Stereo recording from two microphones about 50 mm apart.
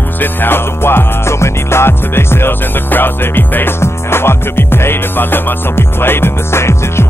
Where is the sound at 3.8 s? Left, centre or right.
Left.